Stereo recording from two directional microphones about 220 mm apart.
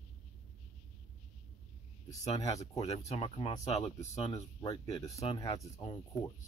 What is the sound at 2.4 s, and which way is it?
Speech, 15° left (ahead or behind).